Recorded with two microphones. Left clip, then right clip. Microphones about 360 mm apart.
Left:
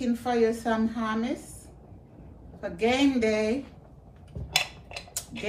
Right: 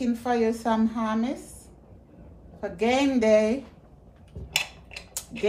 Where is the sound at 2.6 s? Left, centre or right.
Centre.